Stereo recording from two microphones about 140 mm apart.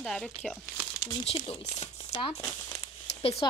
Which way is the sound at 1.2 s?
45° left (ahead or behind).